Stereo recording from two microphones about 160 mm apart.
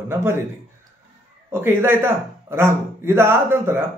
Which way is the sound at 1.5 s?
15° right (ahead or behind).